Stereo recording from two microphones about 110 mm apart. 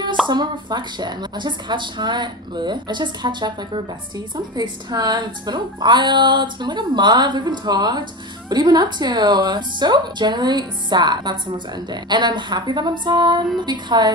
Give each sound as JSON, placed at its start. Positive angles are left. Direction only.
{"t": 0.3, "sound": "a woman's voice", "side_deg": -40}